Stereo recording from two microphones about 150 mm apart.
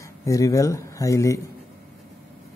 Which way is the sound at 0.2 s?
20° left (ahead or behind).